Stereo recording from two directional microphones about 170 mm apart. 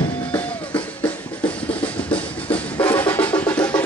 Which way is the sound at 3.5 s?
10° left (ahead or behind).